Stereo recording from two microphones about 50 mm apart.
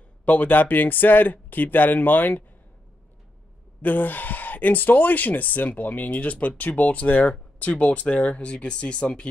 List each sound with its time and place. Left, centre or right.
0.2 s speech: left
3.8 s speech: left